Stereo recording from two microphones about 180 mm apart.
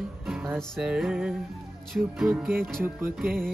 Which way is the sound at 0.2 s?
Centre (ahead or behind).